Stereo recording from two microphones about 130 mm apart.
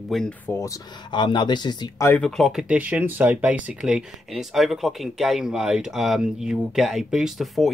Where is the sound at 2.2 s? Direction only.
Centre (ahead or behind).